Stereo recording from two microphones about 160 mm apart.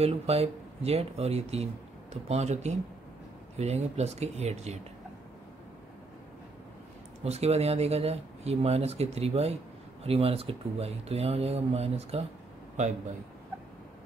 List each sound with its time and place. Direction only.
0.0 s speech: 40° right (ahead or behind)
7.2 s speech: 40° right (ahead or behind)